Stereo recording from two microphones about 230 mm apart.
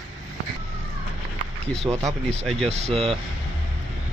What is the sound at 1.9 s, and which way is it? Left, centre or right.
Speech, centre.